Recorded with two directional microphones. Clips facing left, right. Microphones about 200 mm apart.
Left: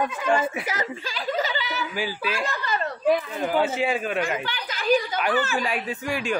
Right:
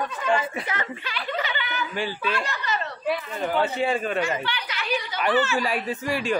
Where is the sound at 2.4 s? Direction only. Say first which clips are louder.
Left 2 dB; 50° left (ahead or behind).